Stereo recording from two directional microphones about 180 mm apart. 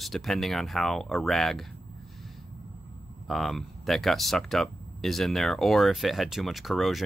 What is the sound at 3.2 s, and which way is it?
Speech, centre (ahead or behind).